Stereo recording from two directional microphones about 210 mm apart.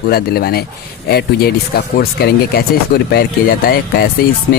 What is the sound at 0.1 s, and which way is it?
Speech, 45° left (ahead or behind).